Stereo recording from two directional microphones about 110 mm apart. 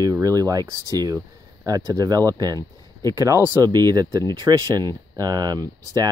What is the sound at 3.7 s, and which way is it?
Speech, 40° right (ahead or behind).